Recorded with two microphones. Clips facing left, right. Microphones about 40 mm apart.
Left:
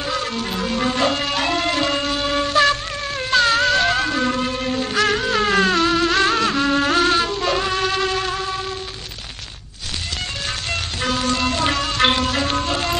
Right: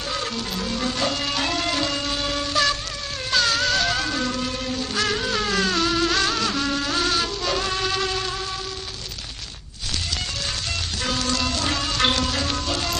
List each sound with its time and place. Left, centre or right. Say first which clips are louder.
0.3 s music: left 4 dB; left
1.2 s music: left 4 dB; centre
2.3 s music: left 7 dB; left
3.3 s a sound: left 5 dB; left
3.6 s cat: left 5 dB; centre
4.2 s music: left 5 dB; left
5.8 s music: left 4 dB; centre
7.0 s music: left 6 dB; centre
11.5 s music: left 4 dB; left